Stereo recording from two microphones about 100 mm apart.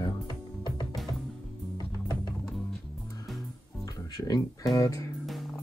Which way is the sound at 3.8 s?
35° left (ahead or behind).